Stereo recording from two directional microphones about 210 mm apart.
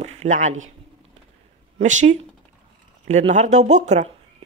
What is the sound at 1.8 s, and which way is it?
A woman's voice, 35° right (ahead or behind).